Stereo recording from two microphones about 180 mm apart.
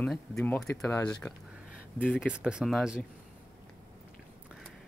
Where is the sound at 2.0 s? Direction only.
5° right (ahead or behind).